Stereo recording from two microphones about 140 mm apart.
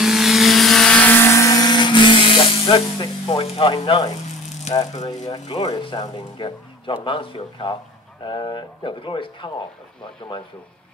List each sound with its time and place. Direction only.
0.0 s vehicle: centre (ahead or behind); by 3.7 s 45° left (ahead or behind)
3.7 s speech: 35° left (ahead or behind)
5.8 s speech: 35° left (ahead or behind)